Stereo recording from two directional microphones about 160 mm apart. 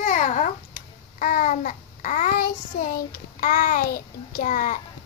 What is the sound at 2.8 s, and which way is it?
A child's voice, 70° left (ahead or behind).